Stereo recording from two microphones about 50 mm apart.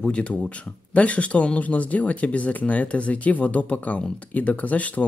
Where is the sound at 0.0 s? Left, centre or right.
Left.